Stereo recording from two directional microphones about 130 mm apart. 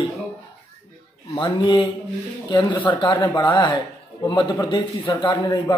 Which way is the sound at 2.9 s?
35° left (ahead or behind).